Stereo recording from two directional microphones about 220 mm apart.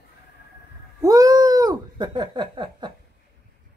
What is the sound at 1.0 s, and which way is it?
Cat, 15° right (ahead or behind).